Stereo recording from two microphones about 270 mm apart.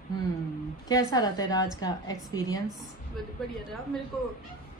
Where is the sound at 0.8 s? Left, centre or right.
Centre.